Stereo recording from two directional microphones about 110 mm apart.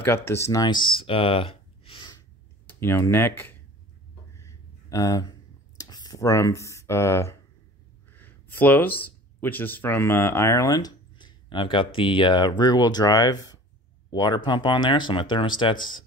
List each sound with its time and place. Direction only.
0.0 s speech: 20° left (ahead or behind); by 2.1 s 55° left (ahead or behind)
2.6 s speech: 20° left (ahead or behind)
4.4 s a sound: 30° left (ahead or behind)
5.8 s speech: 40° left (ahead or behind)